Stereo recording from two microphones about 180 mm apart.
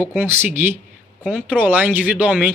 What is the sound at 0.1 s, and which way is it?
Speech, 10° right (ahead or behind).